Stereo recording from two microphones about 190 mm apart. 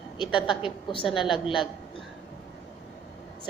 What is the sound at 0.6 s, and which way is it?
Speech, 25° left (ahead or behind).